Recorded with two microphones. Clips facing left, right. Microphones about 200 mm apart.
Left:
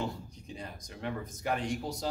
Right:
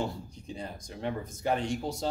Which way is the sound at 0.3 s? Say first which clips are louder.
Right 4 dB; 30° right (ahead or behind).